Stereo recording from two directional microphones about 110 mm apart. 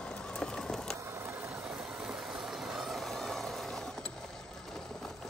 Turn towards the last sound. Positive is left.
turn(degrees=5)  # may be behind; listen again after turning